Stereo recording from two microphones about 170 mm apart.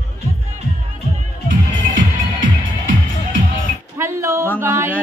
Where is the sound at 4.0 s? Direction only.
15° right (ahead or behind).